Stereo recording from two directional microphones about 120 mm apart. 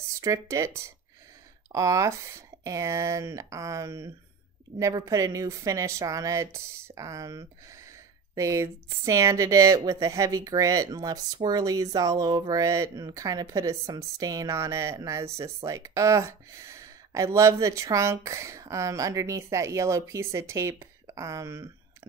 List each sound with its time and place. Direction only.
0.2 s speech: 25° right (ahead or behind)